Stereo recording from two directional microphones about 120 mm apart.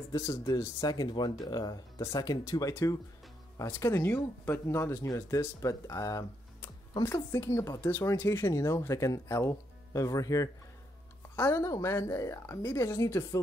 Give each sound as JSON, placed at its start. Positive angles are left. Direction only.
{"t": 0.1, "sound": "speech", "side_deg": 25}